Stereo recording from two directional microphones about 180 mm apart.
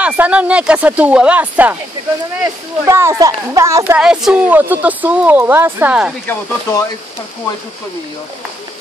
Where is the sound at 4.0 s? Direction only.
5° right (ahead or behind).